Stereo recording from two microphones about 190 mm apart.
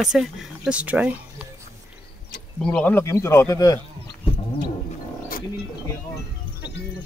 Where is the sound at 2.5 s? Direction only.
5° left (ahead or behind).